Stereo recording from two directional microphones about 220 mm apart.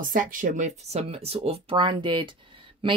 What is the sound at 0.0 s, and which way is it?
Speech, 40° right (ahead or behind).